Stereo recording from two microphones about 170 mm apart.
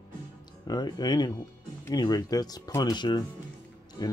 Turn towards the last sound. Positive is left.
turn(degrees=25)  # may be behind; listen again after turning